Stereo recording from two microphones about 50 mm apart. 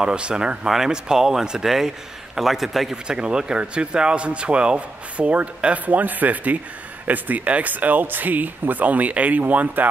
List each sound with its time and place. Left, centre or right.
0.0 s a man's voice: centre
3.1 s speech: centre; by 9.8 s right